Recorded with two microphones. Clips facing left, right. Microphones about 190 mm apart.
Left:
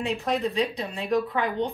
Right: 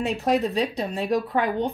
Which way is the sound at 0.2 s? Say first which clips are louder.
Right 5 dB; 45° right (ahead or behind).